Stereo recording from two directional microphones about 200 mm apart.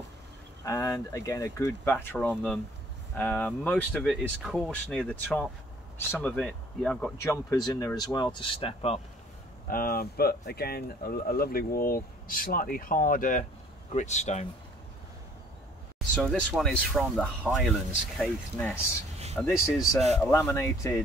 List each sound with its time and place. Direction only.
0.7 s speech: 15° left (ahead or behind)
7.2 s speech: 15° left (ahead or behind); by 9.0 s 30° left (ahead or behind)
9.7 s speech: 45° left (ahead or behind)
16.2 s speech: centre (ahead or behind)